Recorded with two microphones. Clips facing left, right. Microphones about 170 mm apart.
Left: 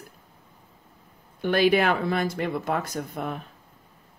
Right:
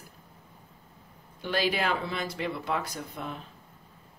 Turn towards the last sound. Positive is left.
turn(degrees=55)  # may be behind; listen again after turning